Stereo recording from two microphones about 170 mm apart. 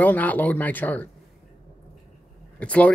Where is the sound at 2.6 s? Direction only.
10° left (ahead or behind).